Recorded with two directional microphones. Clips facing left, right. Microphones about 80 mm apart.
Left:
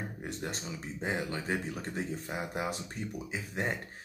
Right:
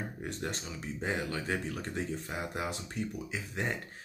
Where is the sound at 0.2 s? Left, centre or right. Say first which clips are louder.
Right 1 dB; centre.